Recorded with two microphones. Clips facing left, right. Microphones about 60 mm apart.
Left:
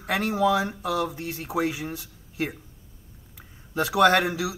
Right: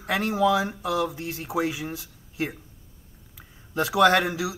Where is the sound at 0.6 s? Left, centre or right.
Right.